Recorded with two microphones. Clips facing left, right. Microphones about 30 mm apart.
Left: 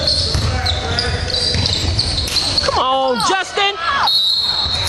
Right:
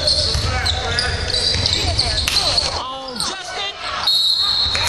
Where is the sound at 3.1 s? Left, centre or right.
Left.